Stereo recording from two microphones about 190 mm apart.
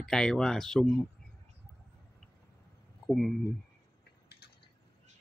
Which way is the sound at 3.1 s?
Centre (ahead or behind).